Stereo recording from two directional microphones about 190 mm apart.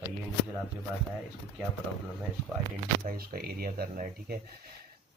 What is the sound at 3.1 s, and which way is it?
Speech, 50° right (ahead or behind).